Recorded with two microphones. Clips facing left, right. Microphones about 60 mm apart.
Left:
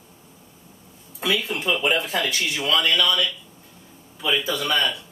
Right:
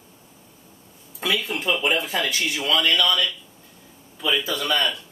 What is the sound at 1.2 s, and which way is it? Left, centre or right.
Speech, centre.